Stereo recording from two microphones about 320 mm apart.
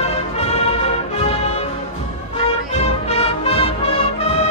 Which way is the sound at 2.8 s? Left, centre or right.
Centre.